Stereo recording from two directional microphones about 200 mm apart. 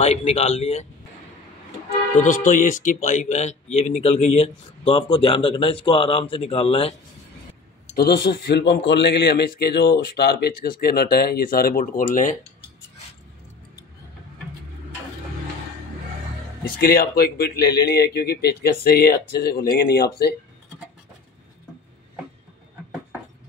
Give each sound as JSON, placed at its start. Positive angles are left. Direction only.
{"t": 0.0, "sound": "speech", "side_deg": 30}
{"t": 2.1, "sound": "speech", "side_deg": 40}
{"t": 7.9, "sound": "speech", "side_deg": 50}
{"t": 16.6, "sound": "speech", "side_deg": 50}